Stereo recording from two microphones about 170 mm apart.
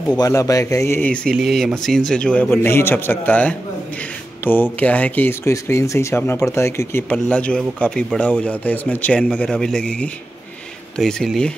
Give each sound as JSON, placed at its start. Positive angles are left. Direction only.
{"t": 0.2, "sound": "speech", "side_deg": 20}